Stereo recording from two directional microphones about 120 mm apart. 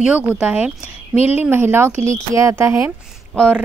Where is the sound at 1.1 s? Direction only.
60° left (ahead or behind).